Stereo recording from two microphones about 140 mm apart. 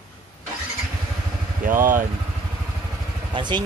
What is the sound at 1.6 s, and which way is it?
Speech, 75° right (ahead or behind).